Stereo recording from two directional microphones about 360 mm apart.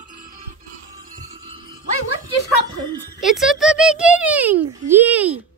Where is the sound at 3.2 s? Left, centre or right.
Centre.